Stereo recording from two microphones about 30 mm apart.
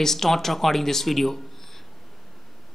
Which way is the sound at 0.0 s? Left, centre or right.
Centre.